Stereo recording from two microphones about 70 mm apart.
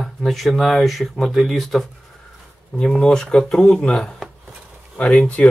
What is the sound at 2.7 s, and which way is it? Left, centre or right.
Speech, centre.